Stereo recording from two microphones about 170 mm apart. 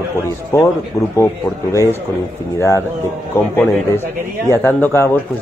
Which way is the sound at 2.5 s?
15° left (ahead or behind).